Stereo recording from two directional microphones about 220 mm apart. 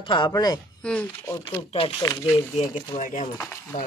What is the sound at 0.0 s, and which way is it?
Speech, 20° left (ahead or behind).